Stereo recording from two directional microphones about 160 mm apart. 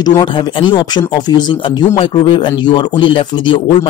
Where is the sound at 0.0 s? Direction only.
25° left (ahead or behind).